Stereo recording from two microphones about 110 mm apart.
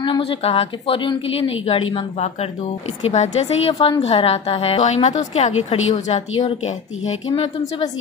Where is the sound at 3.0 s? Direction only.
90° left.